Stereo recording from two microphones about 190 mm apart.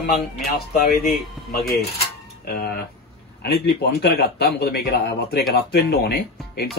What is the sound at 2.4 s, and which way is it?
Speech, 55° left (ahead or behind).